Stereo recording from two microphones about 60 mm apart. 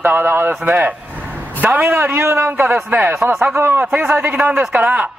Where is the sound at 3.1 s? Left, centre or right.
Right.